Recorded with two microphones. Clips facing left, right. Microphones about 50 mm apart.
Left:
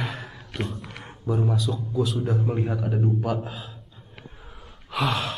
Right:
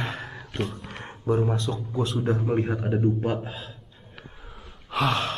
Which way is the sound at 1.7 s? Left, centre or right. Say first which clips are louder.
Left 2 dB; right.